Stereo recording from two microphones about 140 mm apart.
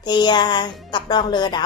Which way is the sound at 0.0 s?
30° left (ahead or behind).